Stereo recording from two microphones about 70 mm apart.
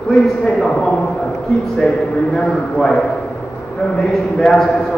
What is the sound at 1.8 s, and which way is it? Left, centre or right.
Speech, centre.